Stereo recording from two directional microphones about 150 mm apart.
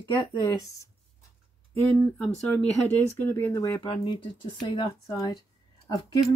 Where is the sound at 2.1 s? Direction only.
5° left (ahead or behind); by 5.4 s 25° left (ahead or behind).